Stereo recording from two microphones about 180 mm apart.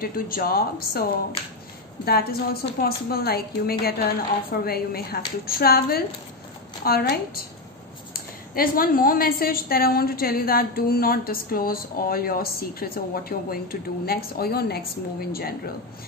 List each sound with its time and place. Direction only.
0.0 s a woman's voice: 55° left (ahead or behind)
2.0 s a woman's voice: 60° left (ahead or behind)